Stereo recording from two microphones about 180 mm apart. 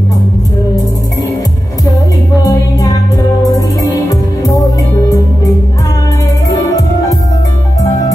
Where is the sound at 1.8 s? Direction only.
20° left (ahead or behind).